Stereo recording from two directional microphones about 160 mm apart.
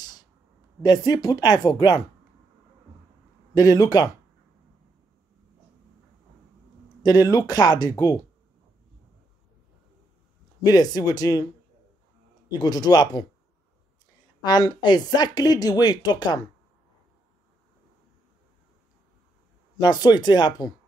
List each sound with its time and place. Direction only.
0.0 s a sound: 25° left (ahead or behind)
0.8 s speech: 25° left (ahead or behind)
3.5 s speech: 25° left (ahead or behind)
7.0 s speech: 25° left (ahead or behind)
10.6 s speech: 25° left (ahead or behind)
12.4 s speech: 25° left (ahead or behind)
14.4 s speech: 25° left (ahead or behind)
19.8 s speech: 25° left (ahead or behind)